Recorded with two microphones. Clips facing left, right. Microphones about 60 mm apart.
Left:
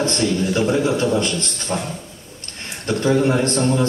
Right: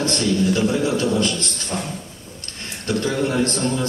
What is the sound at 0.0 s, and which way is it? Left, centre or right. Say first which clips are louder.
A man's voice: even; left.